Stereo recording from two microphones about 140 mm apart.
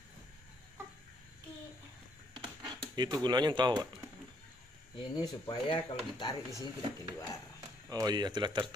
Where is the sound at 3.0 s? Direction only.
30° right (ahead or behind).